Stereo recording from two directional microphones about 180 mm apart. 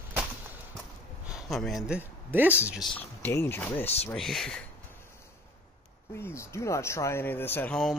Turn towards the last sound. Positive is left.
turn(degrees=5)  # may be behind; listen again after turning